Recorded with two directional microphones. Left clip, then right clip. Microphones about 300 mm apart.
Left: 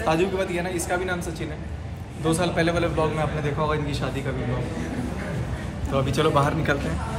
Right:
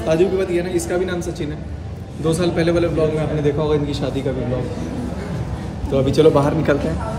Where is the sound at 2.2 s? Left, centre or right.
Centre.